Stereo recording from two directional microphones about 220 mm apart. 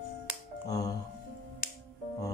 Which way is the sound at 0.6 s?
15° left (ahead or behind).